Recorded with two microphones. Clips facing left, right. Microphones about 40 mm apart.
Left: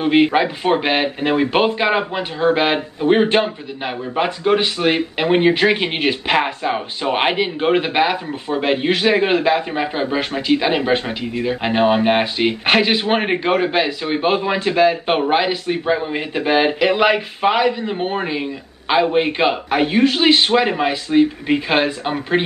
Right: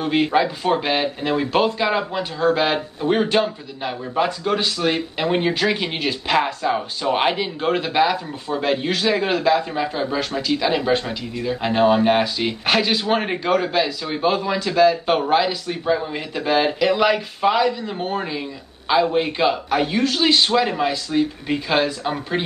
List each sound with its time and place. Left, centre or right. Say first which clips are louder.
0.0 s speech: left 4 dB; left